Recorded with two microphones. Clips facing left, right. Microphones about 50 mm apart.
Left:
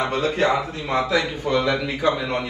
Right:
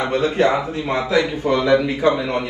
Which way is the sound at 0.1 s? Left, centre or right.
Right.